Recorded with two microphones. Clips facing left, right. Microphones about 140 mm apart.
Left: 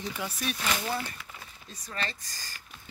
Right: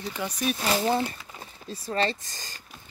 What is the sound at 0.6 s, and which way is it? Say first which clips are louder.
Speech: right 8 dB; 30° right (ahead or behind).